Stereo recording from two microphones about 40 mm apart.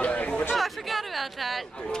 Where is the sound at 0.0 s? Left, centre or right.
Left.